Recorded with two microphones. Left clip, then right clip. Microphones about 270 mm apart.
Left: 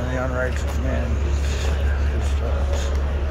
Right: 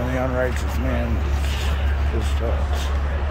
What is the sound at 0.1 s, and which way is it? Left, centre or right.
Vehicle, right.